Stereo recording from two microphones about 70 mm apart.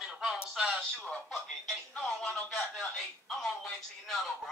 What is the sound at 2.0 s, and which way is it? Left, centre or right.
Speech, centre.